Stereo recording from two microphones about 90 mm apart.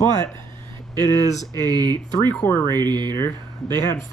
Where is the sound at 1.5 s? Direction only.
45° right (ahead or behind).